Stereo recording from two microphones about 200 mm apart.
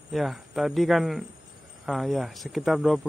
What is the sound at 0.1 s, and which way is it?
Speech, centre (ahead or behind).